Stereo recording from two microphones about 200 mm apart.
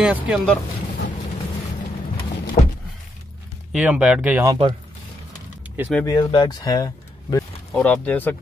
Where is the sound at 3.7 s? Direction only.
5° right (ahead or behind).